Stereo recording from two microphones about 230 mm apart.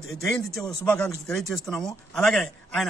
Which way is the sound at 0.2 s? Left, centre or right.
Centre.